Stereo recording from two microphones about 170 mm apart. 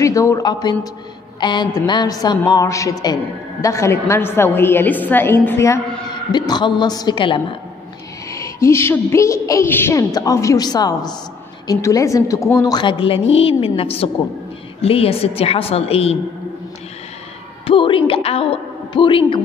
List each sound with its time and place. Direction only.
0.0 s a woman's voice: 20° left (ahead or behind)
8.3 s a woman's voice: 15° left (ahead or behind); by 16.2 s 35° left (ahead or behind)
17.6 s a woman's voice: 30° left (ahead or behind)